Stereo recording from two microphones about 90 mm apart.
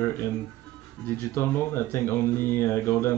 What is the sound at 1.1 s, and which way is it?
Speech, 25° left (ahead or behind).